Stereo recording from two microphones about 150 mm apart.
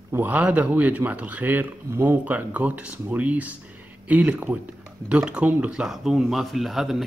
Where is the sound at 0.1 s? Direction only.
10° right (ahead or behind).